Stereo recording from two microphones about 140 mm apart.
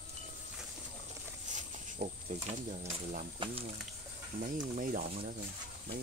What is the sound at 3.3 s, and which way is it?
Speech, 40° right (ahead or behind).